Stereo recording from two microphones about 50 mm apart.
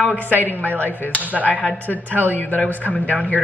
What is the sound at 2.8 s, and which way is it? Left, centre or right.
Speech, left.